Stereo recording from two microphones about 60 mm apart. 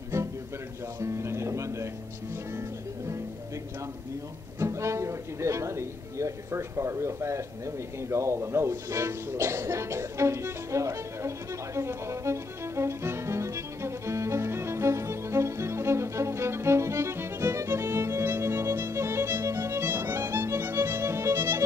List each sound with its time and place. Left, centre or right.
0.1 s music: right
1.0 s music: right
4.6 s speech: right
8.1 s music: right